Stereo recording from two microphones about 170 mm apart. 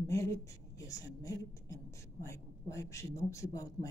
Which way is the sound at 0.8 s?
20° left (ahead or behind).